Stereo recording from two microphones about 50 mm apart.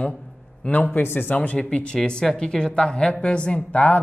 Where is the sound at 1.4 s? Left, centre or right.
Left.